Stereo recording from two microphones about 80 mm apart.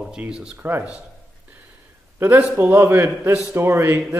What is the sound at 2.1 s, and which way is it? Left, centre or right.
A man's voice, right.